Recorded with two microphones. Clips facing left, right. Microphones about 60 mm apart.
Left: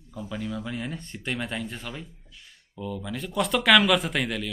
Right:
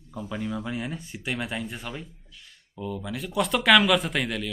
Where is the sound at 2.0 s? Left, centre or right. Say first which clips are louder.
Even; centre.